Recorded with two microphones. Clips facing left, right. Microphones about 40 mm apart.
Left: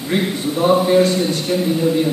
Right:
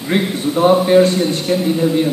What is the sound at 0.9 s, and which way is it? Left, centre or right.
Speech, right.